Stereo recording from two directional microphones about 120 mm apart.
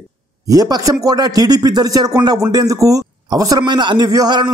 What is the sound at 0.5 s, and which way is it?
A man's voice, 30° right (ahead or behind).